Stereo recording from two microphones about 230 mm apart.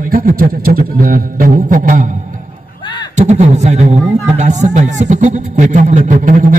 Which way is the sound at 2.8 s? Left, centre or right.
Left.